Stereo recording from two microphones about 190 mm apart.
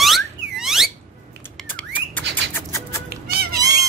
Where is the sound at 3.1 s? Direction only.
55° right (ahead or behind).